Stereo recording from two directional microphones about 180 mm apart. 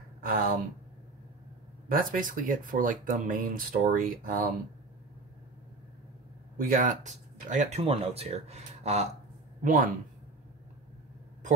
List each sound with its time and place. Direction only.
0.2 s speech: 50° right (ahead or behind)
1.9 s speech: 50° right (ahead or behind)
6.6 s speech: 45° right (ahead or behind)
7.8 s speech: 30° right (ahead or behind)
9.6 s speech: 50° right (ahead or behind)